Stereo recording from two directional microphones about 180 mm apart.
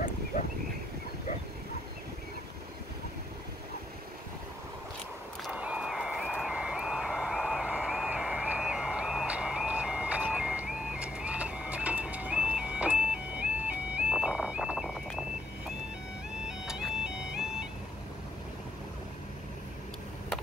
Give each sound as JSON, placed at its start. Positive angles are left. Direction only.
{"t": 0.3, "sound": "a sound", "side_deg": 40}
{"t": 5.4, "sound": "music", "side_deg": -5}
{"t": 16.4, "sound": "music", "side_deg": -5}